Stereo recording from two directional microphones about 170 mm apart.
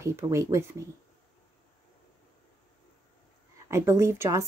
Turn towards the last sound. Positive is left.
turn(degrees=-15)  # may be behind; listen again after turning